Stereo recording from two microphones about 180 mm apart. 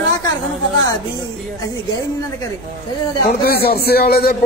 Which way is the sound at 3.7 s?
60° left (ahead or behind).